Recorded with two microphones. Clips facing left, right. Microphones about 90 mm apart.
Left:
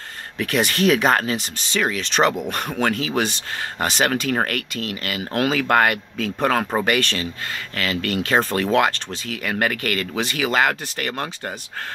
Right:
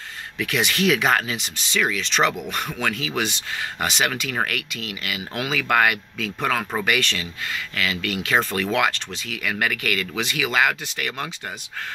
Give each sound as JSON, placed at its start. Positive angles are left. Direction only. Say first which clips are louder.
{"t": 0.4, "sound": "speech", "louder": "left 3 dB", "side_deg": 40}
{"t": 7.0, "sound": "speech", "louder": "left 3 dB", "side_deg": 40}